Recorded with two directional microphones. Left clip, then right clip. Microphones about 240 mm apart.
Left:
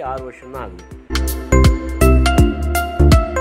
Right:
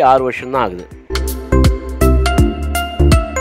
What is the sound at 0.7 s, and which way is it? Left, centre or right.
Music, centre.